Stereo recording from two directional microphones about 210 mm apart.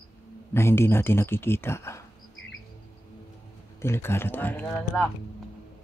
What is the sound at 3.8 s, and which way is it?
Speech, 10° left (ahead or behind).